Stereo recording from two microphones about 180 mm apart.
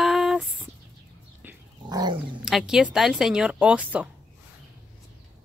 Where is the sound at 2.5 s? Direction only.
5° right (ahead or behind).